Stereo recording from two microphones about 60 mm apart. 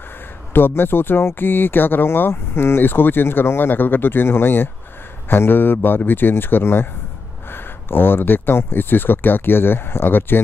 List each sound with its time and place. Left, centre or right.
0.5 s speech: left